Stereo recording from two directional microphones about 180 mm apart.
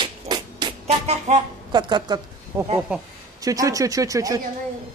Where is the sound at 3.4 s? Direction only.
20° right (ahead or behind).